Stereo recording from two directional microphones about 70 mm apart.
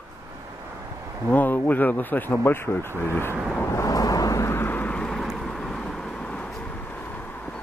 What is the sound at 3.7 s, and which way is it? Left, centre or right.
Thunder, left.